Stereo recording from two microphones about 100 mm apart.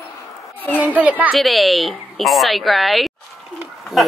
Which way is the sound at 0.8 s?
15° right (ahead or behind).